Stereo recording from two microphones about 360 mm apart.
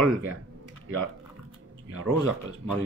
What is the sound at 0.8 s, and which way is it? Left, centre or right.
Speech, right.